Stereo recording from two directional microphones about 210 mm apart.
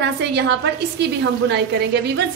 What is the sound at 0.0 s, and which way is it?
Speech, 55° right (ahead or behind).